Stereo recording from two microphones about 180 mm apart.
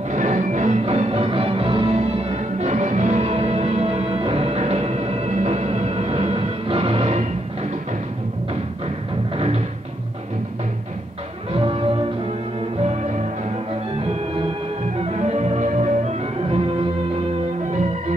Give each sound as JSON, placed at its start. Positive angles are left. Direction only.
{"t": 0.1, "sound": "music", "side_deg": -40}
{"t": 11.5, "sound": "music", "side_deg": -30}
{"t": 15.0, "sound": "music", "side_deg": -35}